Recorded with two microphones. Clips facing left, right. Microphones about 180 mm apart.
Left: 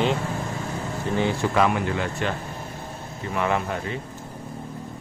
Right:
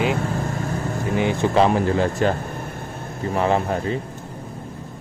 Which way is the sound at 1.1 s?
20° right (ahead or behind).